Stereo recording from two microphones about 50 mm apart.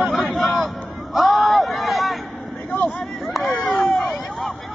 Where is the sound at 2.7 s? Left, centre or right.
Left.